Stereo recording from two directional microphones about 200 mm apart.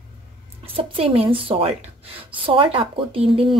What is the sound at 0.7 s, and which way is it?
A woman's voice, 30° right (ahead or behind).